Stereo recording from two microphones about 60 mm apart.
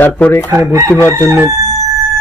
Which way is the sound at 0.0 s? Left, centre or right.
Left.